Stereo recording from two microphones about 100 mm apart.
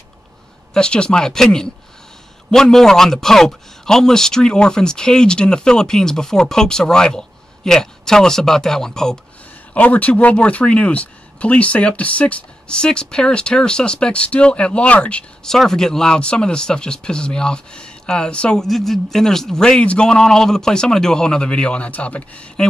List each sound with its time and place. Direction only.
0.7 s a man's voice: 10° left (ahead or behind)